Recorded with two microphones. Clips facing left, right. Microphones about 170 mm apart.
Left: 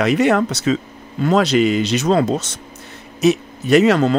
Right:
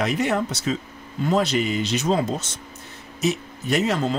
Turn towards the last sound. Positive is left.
turn(degrees=75)  # may be behind; listen again after turning